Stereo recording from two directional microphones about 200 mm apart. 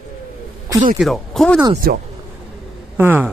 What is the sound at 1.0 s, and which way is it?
Speech, centre (ahead or behind).